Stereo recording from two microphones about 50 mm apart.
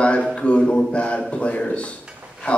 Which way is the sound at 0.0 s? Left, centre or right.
Left.